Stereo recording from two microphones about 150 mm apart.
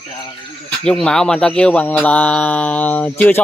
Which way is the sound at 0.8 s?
5° left (ahead or behind).